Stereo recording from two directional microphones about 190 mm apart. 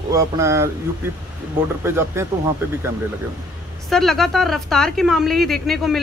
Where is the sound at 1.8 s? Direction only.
10° right (ahead or behind).